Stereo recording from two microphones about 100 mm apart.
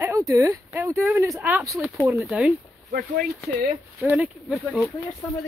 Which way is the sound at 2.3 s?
15° right (ahead or behind).